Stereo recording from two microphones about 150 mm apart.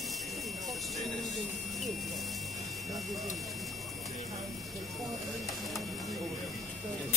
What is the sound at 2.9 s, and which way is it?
Speech, centre (ahead or behind).